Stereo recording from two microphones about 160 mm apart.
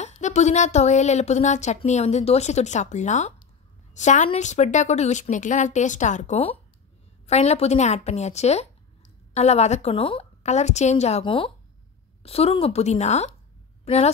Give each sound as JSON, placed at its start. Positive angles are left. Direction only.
{"t": 0.0, "sound": "a woman's voice", "side_deg": 45}